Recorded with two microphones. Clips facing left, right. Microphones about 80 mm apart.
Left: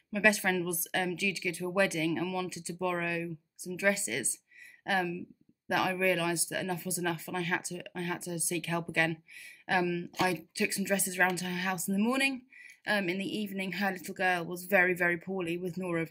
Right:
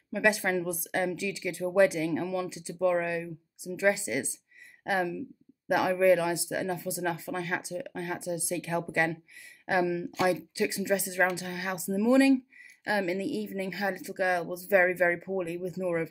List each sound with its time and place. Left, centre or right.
0.1 s speech: right